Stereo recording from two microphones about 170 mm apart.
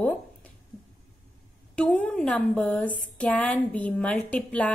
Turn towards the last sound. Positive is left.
turn(degrees=10)  # may be behind; listen again after turning